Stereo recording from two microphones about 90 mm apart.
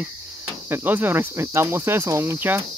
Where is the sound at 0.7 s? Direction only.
20° right (ahead or behind).